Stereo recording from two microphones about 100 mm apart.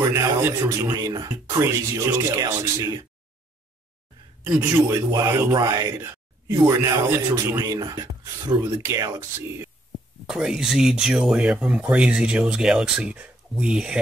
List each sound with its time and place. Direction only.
0.1 s speech: 25° right (ahead or behind)
0.8 s a man's voice: 40° right (ahead or behind)
1.6 s speech: 25° right (ahead or behind)
4.7 s speech: 30° right (ahead or behind)
5.5 s a man's voice: 40° right (ahead or behind)
7.6 s a man's voice: 40° right (ahead or behind)
8.6 s speech: 30° right (ahead or behind)
10.2 s speech: 5° right (ahead or behind)